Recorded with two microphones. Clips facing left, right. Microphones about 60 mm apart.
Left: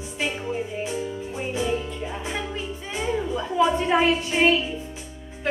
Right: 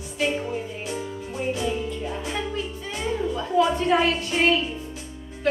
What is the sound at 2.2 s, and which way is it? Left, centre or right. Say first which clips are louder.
Music: right 1 dB; centre.